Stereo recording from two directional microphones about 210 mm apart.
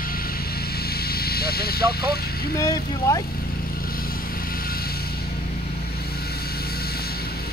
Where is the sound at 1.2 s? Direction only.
45° left (ahead or behind).